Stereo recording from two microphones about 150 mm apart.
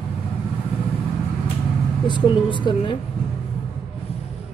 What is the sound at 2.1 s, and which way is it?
Speech, 35° left (ahead or behind).